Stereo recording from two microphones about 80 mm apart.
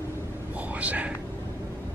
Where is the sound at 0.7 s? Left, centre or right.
Centre.